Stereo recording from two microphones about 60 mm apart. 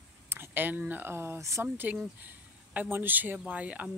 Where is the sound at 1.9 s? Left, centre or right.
Right.